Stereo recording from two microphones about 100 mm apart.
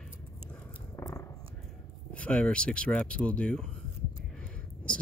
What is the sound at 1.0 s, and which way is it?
Dog, 30° left (ahead or behind).